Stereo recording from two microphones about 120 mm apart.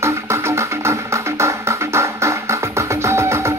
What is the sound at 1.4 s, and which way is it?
Music, 25° right (ahead or behind).